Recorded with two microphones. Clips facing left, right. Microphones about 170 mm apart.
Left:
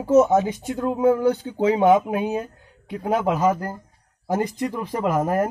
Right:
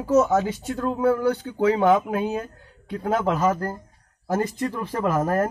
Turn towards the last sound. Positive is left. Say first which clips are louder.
# left 1 dB
turn(degrees=15)  # may be behind; listen again after turning